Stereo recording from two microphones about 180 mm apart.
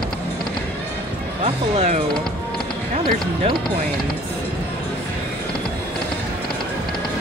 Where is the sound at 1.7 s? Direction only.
40° right (ahead or behind).